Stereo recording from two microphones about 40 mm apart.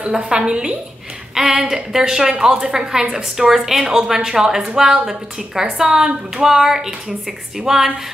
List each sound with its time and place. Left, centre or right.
0.2 s a woman's voice: right